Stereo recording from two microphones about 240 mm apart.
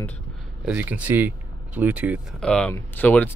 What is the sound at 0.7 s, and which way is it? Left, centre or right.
Speech, centre.